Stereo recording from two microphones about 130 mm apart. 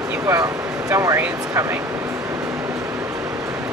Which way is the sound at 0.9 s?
25° right (ahead or behind).